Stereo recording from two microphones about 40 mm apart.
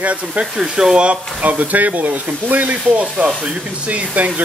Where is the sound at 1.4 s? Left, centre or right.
Right.